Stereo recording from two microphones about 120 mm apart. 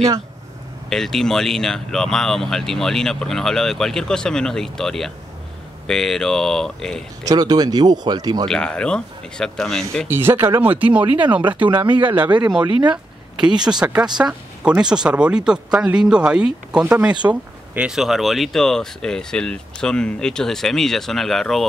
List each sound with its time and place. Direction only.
0.8 s speech: 5° left (ahead or behind)
7.2 s speech: 35° right (ahead or behind)
8.5 s speech: 5° left (ahead or behind)
10.0 s speech: 20° right (ahead or behind)
12.3 s speech: 40° right (ahead or behind)
12.9 s a sound: 5° right (ahead or behind)
14.1 s speech: 10° right (ahead or behind)